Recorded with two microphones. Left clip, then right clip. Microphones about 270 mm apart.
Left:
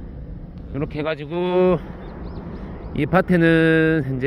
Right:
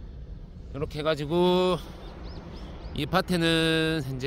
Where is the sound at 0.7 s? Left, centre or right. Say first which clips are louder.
Left 3 dB; right.